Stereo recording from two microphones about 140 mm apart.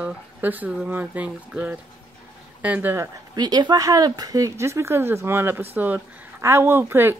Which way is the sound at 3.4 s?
30° right (ahead or behind).